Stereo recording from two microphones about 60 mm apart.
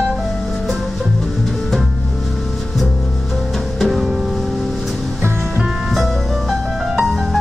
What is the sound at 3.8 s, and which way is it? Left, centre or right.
Music, centre.